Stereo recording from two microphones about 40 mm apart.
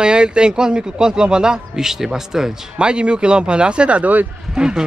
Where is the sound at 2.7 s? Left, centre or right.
Right.